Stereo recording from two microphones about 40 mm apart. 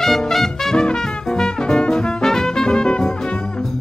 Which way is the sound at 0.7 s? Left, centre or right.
Centre.